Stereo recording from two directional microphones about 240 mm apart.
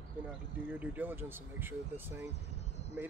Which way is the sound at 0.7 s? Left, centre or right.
Centre.